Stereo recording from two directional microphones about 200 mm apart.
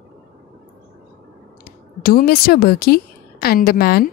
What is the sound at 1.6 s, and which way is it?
Speech, 50° left (ahead or behind).